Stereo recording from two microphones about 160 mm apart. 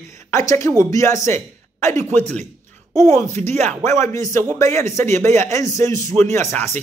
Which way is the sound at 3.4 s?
45° right (ahead or behind).